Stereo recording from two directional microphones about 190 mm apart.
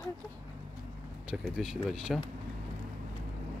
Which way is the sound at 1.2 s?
Centre (ahead or behind).